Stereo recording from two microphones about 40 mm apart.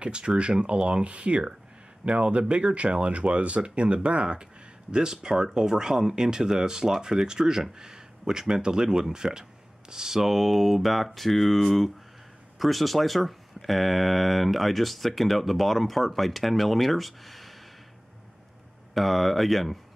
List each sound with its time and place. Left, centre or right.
0.0 s speech: right; by 17.6 s centre
18.9 s speech: centre